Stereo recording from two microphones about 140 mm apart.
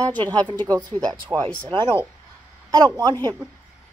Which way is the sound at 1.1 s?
25° right (ahead or behind).